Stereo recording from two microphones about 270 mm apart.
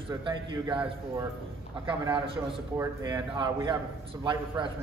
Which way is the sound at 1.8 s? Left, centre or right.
Centre.